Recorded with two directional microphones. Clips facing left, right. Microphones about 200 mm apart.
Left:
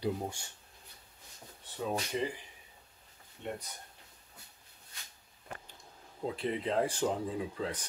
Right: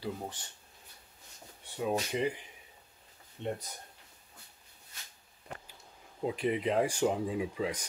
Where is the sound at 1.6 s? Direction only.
10° right (ahead or behind).